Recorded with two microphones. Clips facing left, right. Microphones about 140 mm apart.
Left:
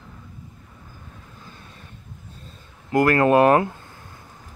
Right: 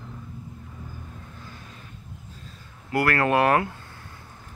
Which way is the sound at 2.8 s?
20° left (ahead or behind).